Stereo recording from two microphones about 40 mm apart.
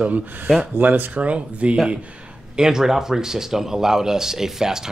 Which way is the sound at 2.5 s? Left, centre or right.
Centre.